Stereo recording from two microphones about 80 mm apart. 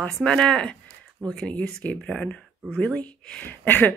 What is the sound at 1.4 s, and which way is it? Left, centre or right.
Speech, centre.